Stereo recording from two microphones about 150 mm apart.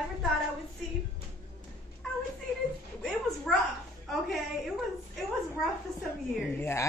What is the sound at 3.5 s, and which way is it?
Speech, 5° left (ahead or behind).